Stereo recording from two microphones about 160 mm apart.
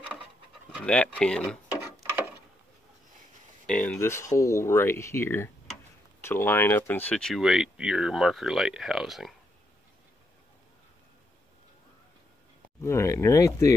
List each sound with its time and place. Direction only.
0.7 s speech: 5° left (ahead or behind)
3.6 s speech: 5° left (ahead or behind)
12.8 s speech: 20° left (ahead or behind)